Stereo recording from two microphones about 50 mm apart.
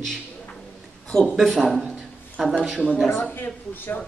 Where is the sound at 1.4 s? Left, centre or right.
Centre.